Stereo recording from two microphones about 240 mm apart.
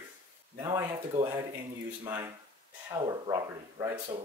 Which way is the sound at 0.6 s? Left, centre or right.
Centre.